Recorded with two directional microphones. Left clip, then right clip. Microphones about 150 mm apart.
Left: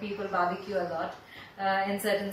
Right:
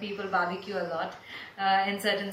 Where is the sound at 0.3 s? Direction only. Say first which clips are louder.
Even; 20° right (ahead or behind).